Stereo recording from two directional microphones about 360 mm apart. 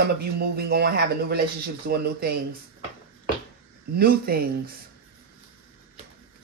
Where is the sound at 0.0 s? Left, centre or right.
Right.